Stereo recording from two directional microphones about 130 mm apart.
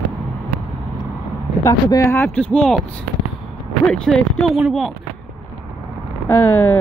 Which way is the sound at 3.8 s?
5° left (ahead or behind).